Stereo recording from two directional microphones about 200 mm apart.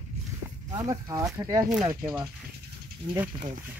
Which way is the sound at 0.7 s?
15° right (ahead or behind).